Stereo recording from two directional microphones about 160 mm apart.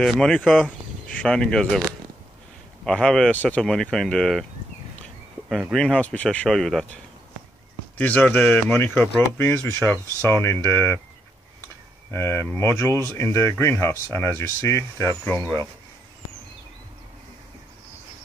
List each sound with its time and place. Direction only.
0.0 s speech: centre (ahead or behind)
5.7 s speech: 5° left (ahead or behind)
8.0 s speech: 10° left (ahead or behind)
12.1 s speech: 15° left (ahead or behind)